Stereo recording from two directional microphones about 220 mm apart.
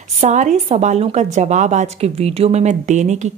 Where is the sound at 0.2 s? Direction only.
30° right (ahead or behind).